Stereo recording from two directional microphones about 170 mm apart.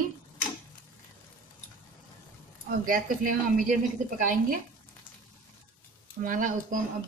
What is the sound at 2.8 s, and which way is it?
Speech, 50° right (ahead or behind).